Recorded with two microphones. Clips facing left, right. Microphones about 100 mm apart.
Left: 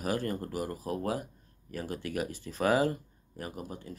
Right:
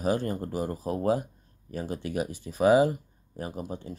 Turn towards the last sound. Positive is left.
turn(degrees=-25)  # may be behind; listen again after turning